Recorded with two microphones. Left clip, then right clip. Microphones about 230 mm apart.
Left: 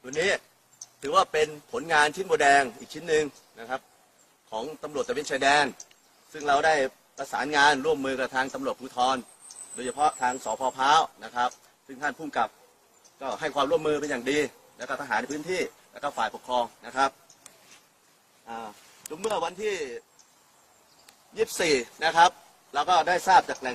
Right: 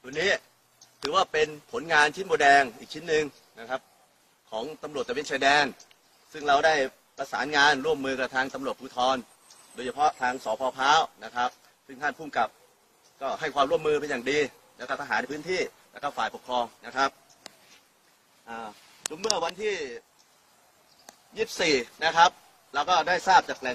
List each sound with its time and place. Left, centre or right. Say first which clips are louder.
0.0 s a sound: even; centre
1.0 s a man's voice: left 1 dB; centre
19.1 s a man's voice: even; centre
21.4 s a man's voice: left 1 dB; centre